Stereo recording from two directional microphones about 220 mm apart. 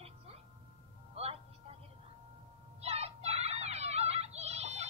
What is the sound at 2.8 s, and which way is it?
Children playing, 30° right (ahead or behind).